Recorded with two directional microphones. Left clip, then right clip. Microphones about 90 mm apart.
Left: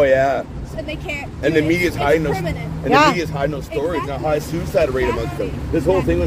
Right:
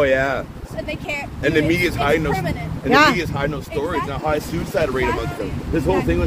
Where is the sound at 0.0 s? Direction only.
45° right (ahead or behind).